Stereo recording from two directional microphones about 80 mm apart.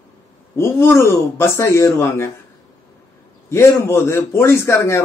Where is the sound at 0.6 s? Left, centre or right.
Left.